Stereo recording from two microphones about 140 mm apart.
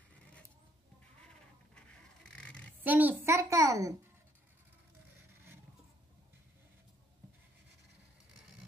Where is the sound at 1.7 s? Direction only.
5° left (ahead or behind).